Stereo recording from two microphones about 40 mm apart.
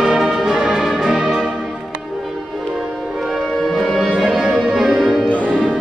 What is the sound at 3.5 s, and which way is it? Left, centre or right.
Music, centre.